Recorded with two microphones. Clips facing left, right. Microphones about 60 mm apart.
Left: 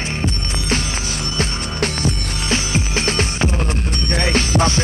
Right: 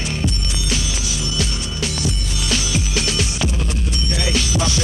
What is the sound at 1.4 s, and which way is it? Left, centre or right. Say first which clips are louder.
Music: left 6 dB; left.